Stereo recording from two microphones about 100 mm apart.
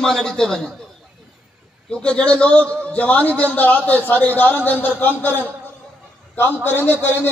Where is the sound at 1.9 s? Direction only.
10° left (ahead or behind).